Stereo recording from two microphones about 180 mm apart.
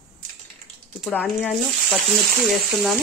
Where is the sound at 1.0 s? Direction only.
5° left (ahead or behind).